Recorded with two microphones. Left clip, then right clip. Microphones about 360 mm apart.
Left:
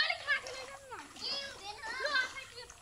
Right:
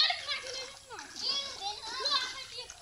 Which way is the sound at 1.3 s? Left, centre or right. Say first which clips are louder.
Right 6 dB; centre.